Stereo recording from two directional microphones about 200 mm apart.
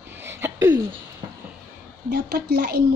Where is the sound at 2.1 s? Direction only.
55° right (ahead or behind).